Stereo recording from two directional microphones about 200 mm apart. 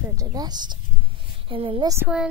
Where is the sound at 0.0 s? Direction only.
15° right (ahead or behind).